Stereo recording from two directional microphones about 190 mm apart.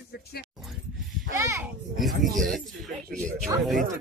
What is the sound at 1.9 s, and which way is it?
Speech, centre (ahead or behind).